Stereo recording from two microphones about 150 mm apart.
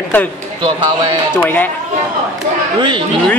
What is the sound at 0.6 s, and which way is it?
Speech, 35° right (ahead or behind).